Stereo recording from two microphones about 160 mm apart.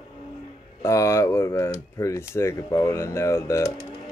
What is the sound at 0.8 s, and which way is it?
Speech, 20° left (ahead or behind).